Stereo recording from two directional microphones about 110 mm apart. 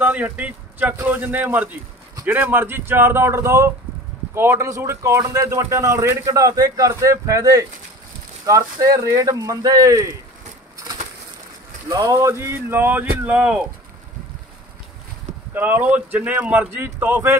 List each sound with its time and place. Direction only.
0.0 s speech: 15° right (ahead or behind); by 10.0 s 35° right (ahead or behind)
11.9 s speech: 30° right (ahead or behind); by 13.7 s 10° right (ahead or behind)
15.5 s speech: 15° right (ahead or behind)